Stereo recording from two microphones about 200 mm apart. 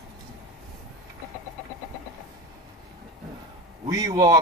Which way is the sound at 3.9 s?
20° right (ahead or behind).